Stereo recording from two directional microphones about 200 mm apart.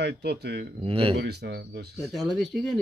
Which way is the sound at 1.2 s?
55° right (ahead or behind).